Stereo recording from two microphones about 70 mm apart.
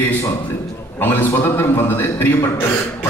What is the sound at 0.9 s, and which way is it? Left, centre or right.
A man's voice, left.